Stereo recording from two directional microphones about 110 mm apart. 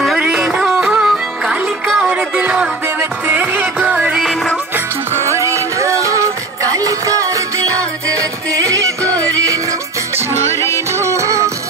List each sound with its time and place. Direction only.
0.3 s music: 5° right (ahead or behind)
2.1 s music: 10° right (ahead or behind)
4.7 s music: 25° right (ahead or behind)
10.5 s music: 25° left (ahead or behind)
10.9 s music: 25° right (ahead or behind)